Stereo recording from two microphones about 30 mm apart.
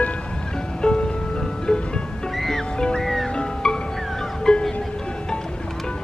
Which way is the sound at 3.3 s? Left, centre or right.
Left.